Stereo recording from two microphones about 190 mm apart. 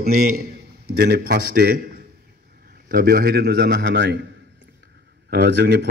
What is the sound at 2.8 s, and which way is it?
A man's voice, 50° right (ahead or behind).